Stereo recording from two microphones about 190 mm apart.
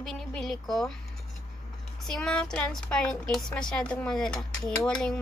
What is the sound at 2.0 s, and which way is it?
A woman's voice, 5° left (ahead or behind).